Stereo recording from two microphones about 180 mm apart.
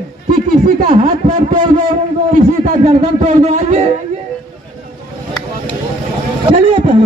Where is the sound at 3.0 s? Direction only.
40° right (ahead or behind).